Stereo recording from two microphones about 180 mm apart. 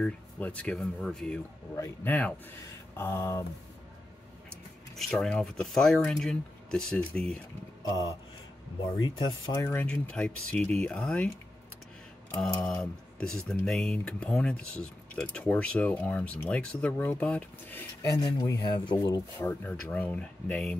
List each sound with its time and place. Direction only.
0.0 s speech: 5° left (ahead or behind)
4.9 s speech: centre (ahead or behind)
9.0 s speech: 20° left (ahead or behind); by 11.2 s 5° left (ahead or behind)
12.4 s speech: 5° left (ahead or behind)